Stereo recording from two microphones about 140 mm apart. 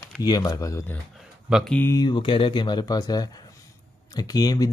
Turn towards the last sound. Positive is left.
turn(degrees=25)  # may be behind; listen again after turning